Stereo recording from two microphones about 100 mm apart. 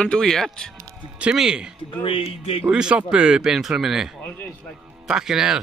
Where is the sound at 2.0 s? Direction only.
65° left (ahead or behind).